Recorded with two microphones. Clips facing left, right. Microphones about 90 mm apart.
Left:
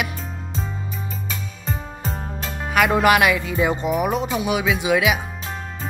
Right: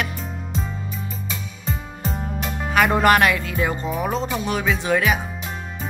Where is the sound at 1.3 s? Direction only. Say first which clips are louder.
Even; 40° left (ahead or behind).